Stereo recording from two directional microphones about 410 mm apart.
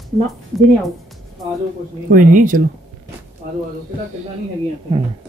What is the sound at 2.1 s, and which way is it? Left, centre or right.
Speech, centre.